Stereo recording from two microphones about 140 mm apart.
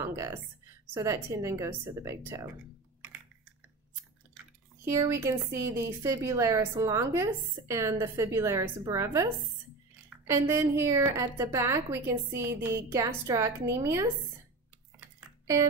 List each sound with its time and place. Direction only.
0.0 s a woman's voice: 20° right (ahead or behind)
4.8 s a woman's voice: 20° right (ahead or behind)
15.0 s typing: 20° right (ahead or behind)